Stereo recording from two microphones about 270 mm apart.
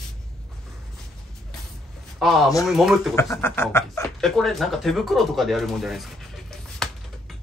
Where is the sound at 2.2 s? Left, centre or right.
Centre.